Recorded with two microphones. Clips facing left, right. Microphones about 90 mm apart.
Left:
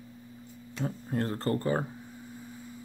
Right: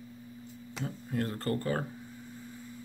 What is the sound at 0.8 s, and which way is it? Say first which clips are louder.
Speech: left 3 dB; 30° left (ahead or behind).